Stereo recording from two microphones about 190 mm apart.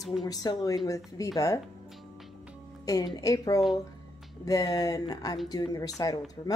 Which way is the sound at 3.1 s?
20° left (ahead or behind).